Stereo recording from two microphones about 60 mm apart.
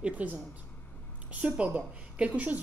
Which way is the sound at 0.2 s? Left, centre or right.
Right.